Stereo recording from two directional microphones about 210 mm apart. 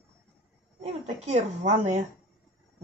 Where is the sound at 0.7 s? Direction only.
30° right (ahead or behind).